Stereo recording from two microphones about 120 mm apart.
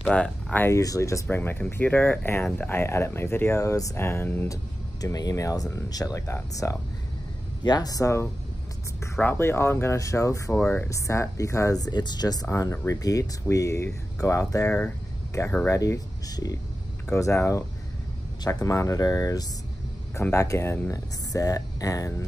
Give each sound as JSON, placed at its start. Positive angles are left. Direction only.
{"t": 0.0, "sound": "speech", "side_deg": 10}
{"t": 0.7, "sound": "speech", "side_deg": 25}
{"t": 1.3, "sound": "speech", "side_deg": 15}
{"t": 5.0, "sound": "speech", "side_deg": 30}
{"t": 10.5, "sound": "speech", "side_deg": 15}
{"t": 10.9, "sound": "speech", "side_deg": 25}
{"t": 15.4, "sound": "speech", "side_deg": 15}
{"t": 15.7, "sound": "speech", "side_deg": 25}